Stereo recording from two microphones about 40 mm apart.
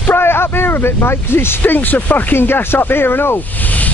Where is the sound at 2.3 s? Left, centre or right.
Left.